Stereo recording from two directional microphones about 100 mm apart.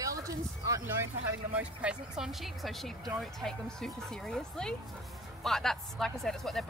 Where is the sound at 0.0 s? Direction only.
35° right (ahead or behind).